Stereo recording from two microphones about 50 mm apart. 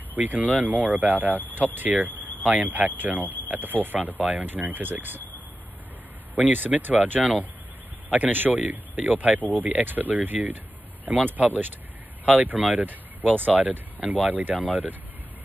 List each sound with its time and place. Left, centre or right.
0.1 s speech: right
6.3 s speech: right